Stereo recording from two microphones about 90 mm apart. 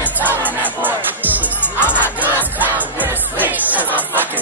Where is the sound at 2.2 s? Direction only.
20° right (ahead or behind).